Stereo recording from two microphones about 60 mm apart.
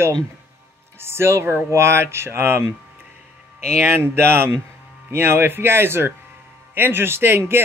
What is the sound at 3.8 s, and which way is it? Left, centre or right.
Speech, right.